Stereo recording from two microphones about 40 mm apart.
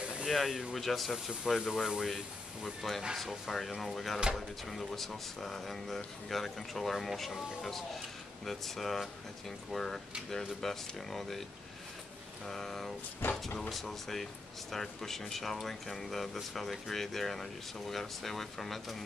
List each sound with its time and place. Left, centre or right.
0.2 s speech: centre
1.4 s speech: centre
2.1 s speech: centre
12.4 s speech: centre
13.2 s speech: left
13.6 s speech: centre